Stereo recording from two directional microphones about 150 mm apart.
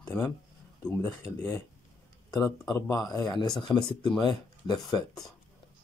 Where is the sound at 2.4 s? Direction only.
20° left (ahead or behind).